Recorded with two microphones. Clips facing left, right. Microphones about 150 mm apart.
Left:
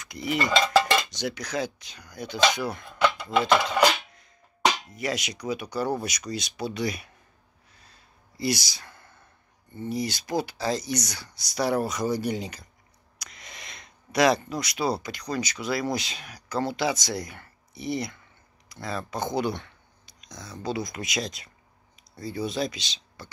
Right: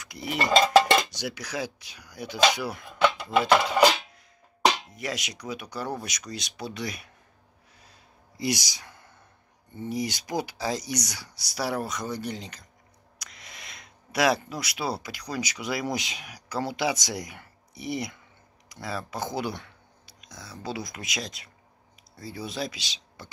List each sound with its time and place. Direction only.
0.0 s cutlery: 5° right (ahead or behind)
1.1 s speech: 5° right (ahead or behind)
3.1 s a sound: centre (ahead or behind)
4.7 s speech: centre (ahead or behind)
8.4 s a sound: 15° right (ahead or behind)
9.8 s speech: 15° right (ahead or behind)
23.2 s speech: 15° right (ahead or behind)